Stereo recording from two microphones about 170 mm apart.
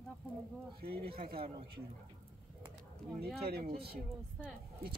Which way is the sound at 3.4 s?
65° right (ahead or behind).